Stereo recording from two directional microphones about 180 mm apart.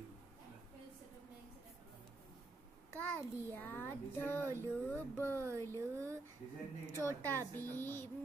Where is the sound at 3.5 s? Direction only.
10° left (ahead or behind).